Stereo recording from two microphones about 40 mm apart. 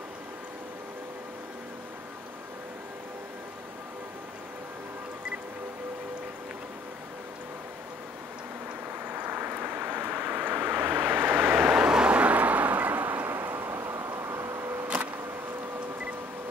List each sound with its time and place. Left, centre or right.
9.0 s vehicle: right
11.1 s vehicle: right
11.7 s vehicle: right